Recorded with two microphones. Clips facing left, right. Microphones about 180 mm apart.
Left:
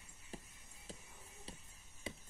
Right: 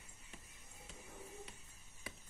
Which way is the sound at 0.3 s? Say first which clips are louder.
Left 8 dB; 35° left (ahead or behind).